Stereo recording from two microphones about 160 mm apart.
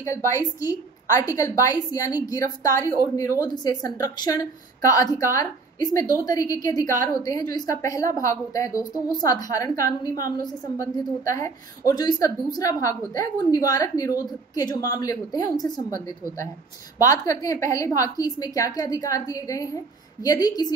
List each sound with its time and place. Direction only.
0.0 s a woman's voice: 20° left (ahead or behind)